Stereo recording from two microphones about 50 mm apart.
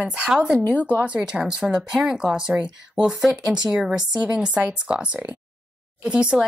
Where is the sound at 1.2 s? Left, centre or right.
Centre.